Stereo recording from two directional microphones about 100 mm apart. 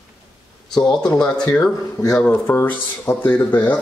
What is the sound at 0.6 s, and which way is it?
Speech, 5° left (ahead or behind).